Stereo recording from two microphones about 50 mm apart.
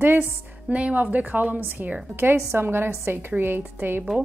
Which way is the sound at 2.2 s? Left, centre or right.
Right.